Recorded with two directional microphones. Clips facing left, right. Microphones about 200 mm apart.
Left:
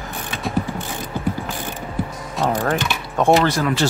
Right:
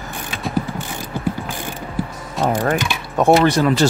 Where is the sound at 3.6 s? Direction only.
30° right (ahead or behind).